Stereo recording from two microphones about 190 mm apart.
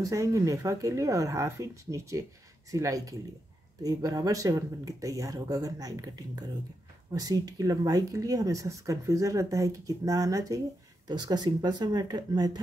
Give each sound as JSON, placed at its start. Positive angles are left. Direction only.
{"t": 0.0, "sound": "speech", "side_deg": -15}